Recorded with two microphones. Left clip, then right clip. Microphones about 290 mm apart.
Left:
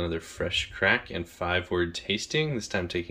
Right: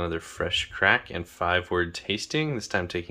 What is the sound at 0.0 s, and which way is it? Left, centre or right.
Speech, centre.